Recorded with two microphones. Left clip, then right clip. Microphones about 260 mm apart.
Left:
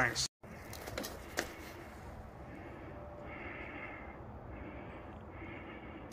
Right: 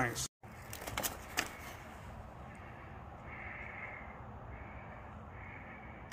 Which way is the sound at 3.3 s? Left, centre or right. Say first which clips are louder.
Right 1 dB; left.